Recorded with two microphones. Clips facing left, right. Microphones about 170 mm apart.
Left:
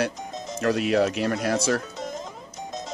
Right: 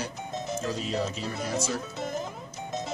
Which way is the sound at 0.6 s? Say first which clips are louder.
Left 12 dB; 75° left (ahead or behind).